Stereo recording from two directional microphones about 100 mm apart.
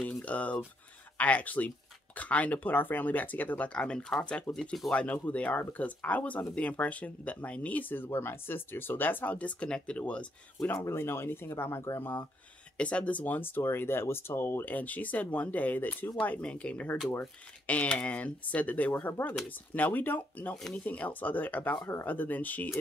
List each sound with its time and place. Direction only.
0.0 s a sound: 10° left (ahead or behind)
1.1 s speech: 15° left (ahead or behind)
10.6 s speech: 25° left (ahead or behind)
12.7 s speech: 10° left (ahead or behind)